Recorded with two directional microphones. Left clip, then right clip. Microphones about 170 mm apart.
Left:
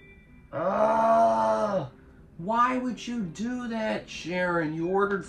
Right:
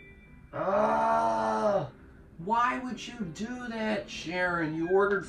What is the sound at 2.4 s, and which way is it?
Speech, 30° left (ahead or behind).